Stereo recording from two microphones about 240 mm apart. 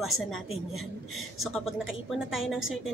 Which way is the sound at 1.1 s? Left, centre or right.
Left.